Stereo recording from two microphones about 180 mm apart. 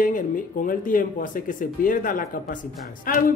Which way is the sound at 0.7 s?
50° left (ahead or behind).